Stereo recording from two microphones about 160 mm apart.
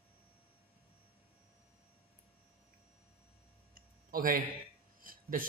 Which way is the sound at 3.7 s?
60° right (ahead or behind).